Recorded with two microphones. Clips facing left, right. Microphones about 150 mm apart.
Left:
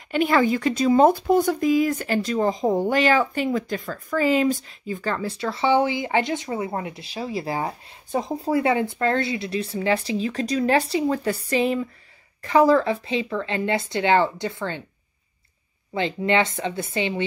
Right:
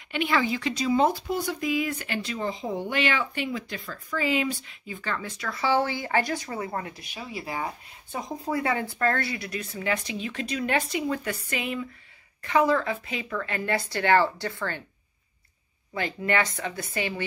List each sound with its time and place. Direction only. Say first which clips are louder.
0.1 s speech: left 6 dB; 45° left (ahead or behind); by 14.8 s 20° left (ahead or behind)
15.9 s speech: left 5 dB; 25° left (ahead or behind)